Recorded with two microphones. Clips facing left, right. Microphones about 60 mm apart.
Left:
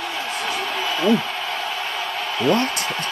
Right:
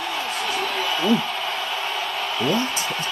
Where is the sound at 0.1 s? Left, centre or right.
Left.